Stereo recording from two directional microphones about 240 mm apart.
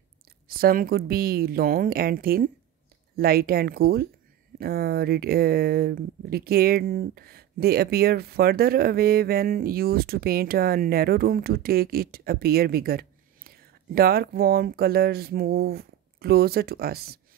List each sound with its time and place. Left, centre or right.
0.5 s speech: right